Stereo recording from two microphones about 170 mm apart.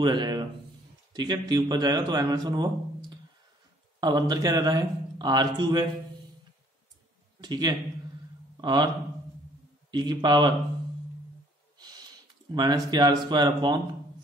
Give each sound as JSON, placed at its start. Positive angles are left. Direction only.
{"t": 0.0, "sound": "a man's voice", "side_deg": -25}
{"t": 7.3, "sound": "a man's voice", "side_deg": -25}
{"t": 11.8, "sound": "speech", "side_deg": -25}